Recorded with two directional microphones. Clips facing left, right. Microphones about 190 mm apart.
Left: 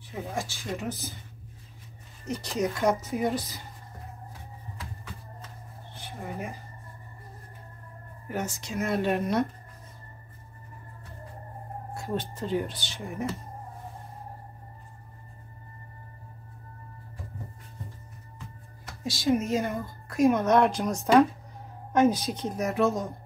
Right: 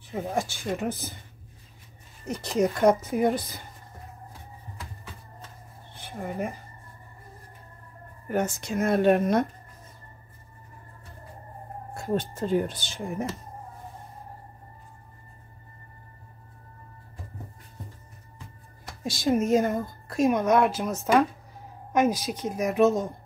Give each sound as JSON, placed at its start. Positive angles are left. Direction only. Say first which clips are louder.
{"t": 0.1, "sound": "a woman's voice", "louder": "right 5 dB", "side_deg": -55}
{"t": 2.2, "sound": "a woman's voice", "louder": "right 4 dB", "side_deg": -55}
{"t": 8.3, "sound": "a woman's voice", "louder": "right 6 dB", "side_deg": -55}
{"t": 11.9, "sound": "a woman's voice", "louder": "right 4 dB", "side_deg": -50}
{"t": 19.0, "sound": "a woman's voice", "louder": "right 2 dB", "side_deg": -50}
{"t": 20.2, "sound": "a woman's voice", "louder": "even", "side_deg": -10}